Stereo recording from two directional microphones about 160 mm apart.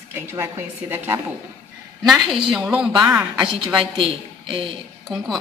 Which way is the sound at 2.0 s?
Centre (ahead or behind).